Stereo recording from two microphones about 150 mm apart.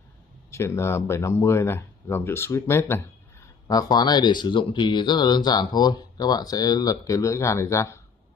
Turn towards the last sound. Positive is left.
turn(degrees=20)  # may be behind; listen again after turning